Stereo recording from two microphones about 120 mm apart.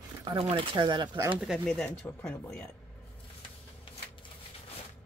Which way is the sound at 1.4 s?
Centre (ahead or behind).